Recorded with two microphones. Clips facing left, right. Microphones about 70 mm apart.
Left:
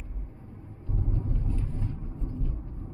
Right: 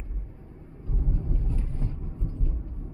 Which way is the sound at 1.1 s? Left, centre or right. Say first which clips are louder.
Even; centre.